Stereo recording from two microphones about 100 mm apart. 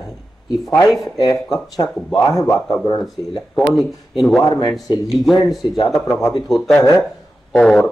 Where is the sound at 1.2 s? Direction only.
40° left (ahead or behind).